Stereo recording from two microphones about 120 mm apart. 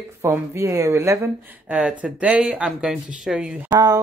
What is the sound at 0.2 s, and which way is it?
Speech, 20° right (ahead or behind).